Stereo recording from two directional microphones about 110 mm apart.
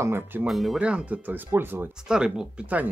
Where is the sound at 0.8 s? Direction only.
10° right (ahead or behind).